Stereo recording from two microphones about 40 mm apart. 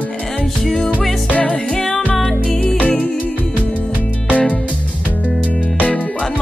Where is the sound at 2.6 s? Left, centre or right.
Left.